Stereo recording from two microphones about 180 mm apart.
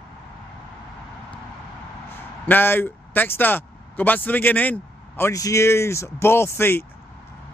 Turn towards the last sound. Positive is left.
turn(degrees=15)  # may be behind; listen again after turning